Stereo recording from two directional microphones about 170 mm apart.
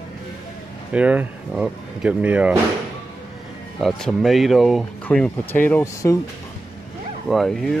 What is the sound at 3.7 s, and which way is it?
Speech, centre (ahead or behind).